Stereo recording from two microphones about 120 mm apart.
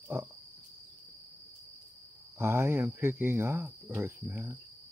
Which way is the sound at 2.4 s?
20° right (ahead or behind).